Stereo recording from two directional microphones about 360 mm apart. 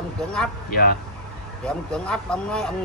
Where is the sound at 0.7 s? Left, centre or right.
Left.